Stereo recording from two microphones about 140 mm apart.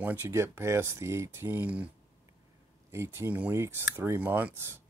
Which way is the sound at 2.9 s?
20° right (ahead or behind).